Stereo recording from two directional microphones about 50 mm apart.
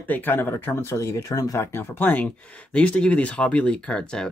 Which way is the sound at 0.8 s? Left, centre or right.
Left.